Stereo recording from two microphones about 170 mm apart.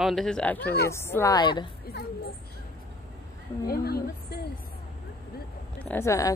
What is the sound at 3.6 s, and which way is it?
Speech, 65° left (ahead or behind).